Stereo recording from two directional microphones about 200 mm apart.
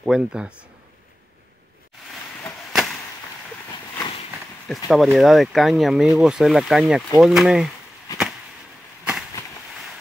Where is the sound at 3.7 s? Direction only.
25° left (ahead or behind).